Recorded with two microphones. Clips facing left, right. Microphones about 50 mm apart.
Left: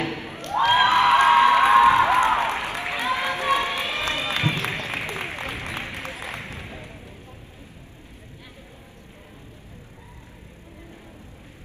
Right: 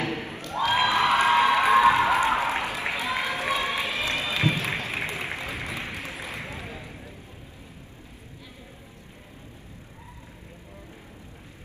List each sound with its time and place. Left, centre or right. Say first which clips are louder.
0.3 s cheering: left 7 dB; left
2.9 s run: left 5 dB; left